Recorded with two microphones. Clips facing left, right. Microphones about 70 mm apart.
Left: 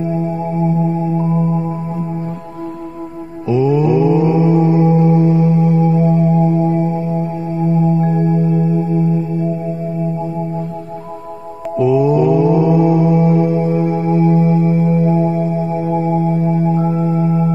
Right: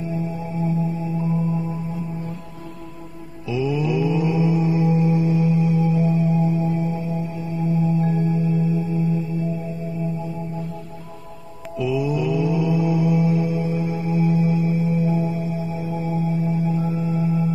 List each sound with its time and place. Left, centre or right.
1.1 s music: left
3.4 s mantra: left
7.7 s singing bowl: left
11.7 s mantra: left